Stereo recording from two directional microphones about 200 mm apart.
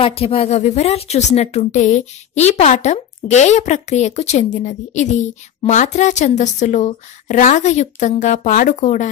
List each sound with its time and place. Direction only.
0.0 s speech: 30° left (ahead or behind)